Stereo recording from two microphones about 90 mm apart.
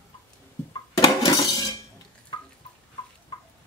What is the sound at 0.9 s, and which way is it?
Dishes, 45° left (ahead or behind).